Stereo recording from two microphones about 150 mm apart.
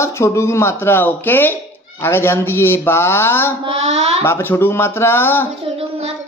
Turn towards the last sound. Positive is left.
turn(degrees=15)  # may be behind; listen again after turning